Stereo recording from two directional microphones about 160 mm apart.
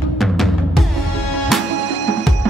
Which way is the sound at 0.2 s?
Centre (ahead or behind).